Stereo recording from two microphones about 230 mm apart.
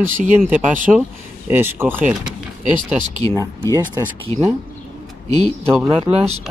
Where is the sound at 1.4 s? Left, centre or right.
Centre.